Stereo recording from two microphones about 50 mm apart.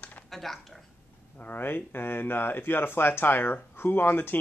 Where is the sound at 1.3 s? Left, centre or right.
Left.